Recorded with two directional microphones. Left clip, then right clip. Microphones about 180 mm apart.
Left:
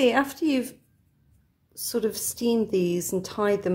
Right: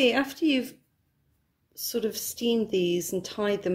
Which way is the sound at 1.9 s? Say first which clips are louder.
Left 3 dB; 5° left (ahead or behind).